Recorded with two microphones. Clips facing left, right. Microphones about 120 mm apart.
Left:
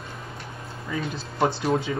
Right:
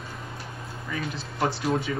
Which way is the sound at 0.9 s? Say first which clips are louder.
Left 3 dB; 25° left (ahead or behind).